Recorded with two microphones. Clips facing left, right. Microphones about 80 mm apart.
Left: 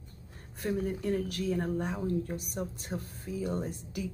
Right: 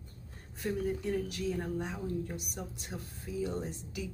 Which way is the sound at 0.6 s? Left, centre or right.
Left.